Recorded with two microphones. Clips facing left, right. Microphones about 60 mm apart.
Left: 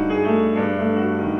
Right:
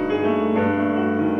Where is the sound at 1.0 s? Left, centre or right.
Centre.